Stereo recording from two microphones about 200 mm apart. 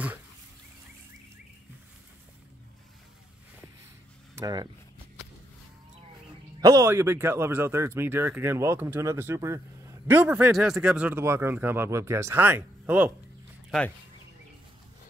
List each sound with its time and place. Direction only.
4.4 s speech: 20° right (ahead or behind)
6.6 s speech: 15° right (ahead or behind)
13.7 s speech: 5° left (ahead or behind)